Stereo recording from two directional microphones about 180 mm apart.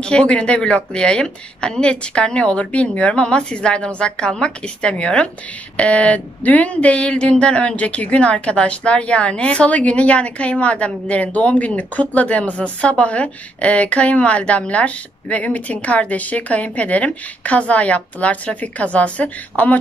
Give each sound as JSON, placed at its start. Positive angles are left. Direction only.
{"t": 0.0, "sound": "speech", "side_deg": 5}